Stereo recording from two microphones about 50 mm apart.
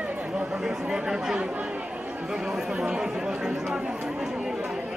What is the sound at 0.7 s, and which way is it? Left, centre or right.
Speech, centre.